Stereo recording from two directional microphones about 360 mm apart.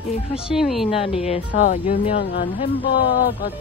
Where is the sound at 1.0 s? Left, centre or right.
Centre.